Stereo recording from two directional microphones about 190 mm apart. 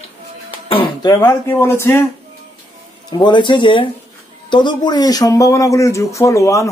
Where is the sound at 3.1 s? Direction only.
25° left (ahead or behind).